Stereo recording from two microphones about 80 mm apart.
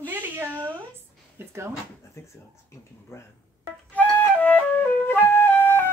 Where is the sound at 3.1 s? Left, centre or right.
Left.